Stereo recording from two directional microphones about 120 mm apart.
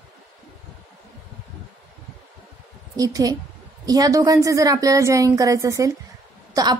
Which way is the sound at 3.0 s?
30° right (ahead or behind).